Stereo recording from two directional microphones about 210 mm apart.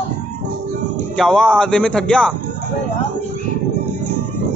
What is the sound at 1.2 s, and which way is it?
A man's voice, 5° left (ahead or behind).